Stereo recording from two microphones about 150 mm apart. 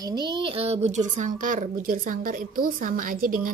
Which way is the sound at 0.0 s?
30° right (ahead or behind).